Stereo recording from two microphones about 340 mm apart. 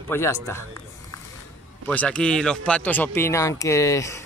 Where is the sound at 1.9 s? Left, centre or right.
Centre.